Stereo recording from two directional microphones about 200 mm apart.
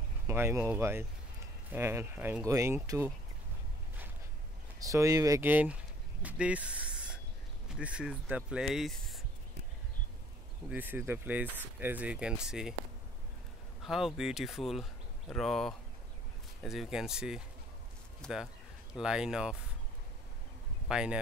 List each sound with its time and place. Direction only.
0.3 s speech: 10° right (ahead or behind)
4.7 s speech: 15° right (ahead or behind); by 9.2 s centre (ahead or behind)
10.7 s speech: 10° right (ahead or behind)
13.8 s speech: centre (ahead or behind)
20.9 s speech: 5° right (ahead or behind)